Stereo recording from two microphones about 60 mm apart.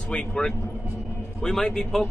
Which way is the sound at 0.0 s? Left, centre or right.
Centre.